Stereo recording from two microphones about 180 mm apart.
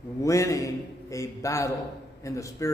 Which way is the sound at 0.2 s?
15° left (ahead or behind).